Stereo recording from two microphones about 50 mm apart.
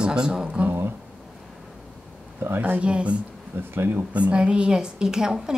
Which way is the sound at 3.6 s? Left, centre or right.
Right.